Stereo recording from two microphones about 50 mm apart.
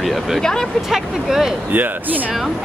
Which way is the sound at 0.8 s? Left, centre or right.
Centre.